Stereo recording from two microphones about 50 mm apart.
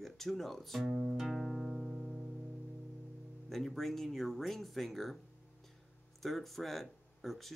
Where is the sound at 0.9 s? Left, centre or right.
Centre.